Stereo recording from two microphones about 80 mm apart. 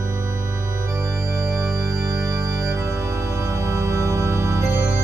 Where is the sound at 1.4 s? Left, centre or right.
Centre.